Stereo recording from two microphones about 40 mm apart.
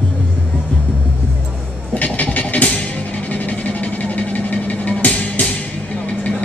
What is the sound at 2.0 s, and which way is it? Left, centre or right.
Vehicle, left.